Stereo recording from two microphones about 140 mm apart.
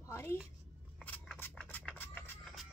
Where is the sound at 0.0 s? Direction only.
20° left (ahead or behind).